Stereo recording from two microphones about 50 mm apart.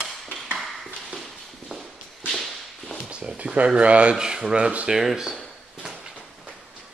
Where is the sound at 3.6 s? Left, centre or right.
Right.